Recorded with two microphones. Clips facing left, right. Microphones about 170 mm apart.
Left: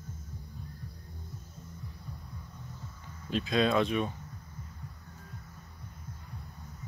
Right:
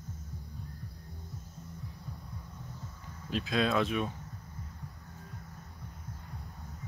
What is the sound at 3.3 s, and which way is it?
Speech, centre (ahead or behind).